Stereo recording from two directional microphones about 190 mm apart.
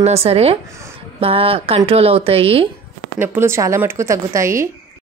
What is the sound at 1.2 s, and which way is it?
Speech, 30° right (ahead or behind).